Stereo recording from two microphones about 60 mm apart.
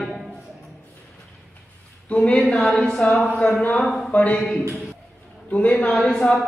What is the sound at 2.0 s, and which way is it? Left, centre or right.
Speech, centre.